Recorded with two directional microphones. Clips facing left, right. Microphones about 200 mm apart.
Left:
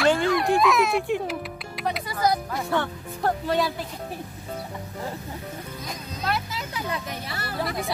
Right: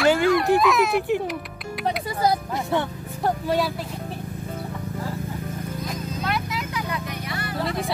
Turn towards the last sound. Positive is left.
turn(degrees=30)  # may be behind; listen again after turning